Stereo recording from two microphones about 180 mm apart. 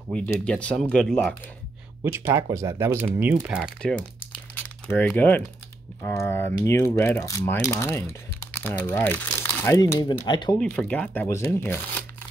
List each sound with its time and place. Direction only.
0.1 s speech: 5° left (ahead or behind)
2.1 s speech: 15° right (ahead or behind)
4.6 s speech: 10° left (ahead or behind); by 10.6 s 25° left (ahead or behind)
10.6 s speech: 5° left (ahead or behind)